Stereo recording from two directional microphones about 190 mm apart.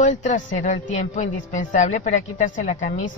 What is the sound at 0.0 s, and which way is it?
Speech, 40° left (ahead or behind).